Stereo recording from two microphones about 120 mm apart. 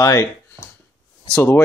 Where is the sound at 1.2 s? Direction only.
15° left (ahead or behind).